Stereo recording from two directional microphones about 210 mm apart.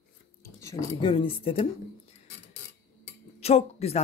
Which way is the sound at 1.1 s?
25° left (ahead or behind).